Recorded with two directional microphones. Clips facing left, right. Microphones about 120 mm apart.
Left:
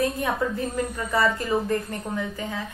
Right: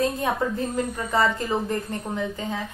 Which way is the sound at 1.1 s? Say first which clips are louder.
Even; 25° right (ahead or behind).